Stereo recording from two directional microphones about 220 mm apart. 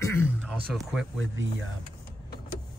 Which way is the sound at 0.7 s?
Centre (ahead or behind).